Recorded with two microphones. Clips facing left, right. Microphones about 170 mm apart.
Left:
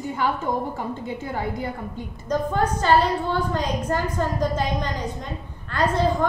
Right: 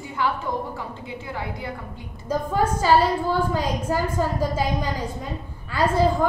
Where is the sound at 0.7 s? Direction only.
45° left (ahead or behind).